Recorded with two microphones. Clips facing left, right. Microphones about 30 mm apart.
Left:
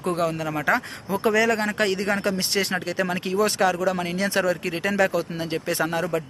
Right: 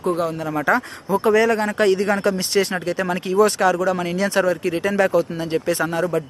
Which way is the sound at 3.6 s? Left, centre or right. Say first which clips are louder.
Right 3 dB; centre.